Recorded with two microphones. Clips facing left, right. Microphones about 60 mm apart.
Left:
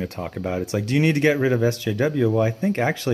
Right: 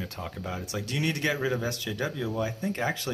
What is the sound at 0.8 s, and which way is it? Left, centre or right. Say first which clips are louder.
Speech: left 10 dB; left.